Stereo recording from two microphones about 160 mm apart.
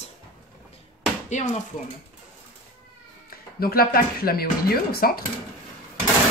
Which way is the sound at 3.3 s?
70° left (ahead or behind).